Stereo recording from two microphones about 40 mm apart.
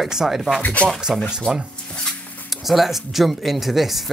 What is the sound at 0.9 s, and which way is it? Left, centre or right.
Speech, centre.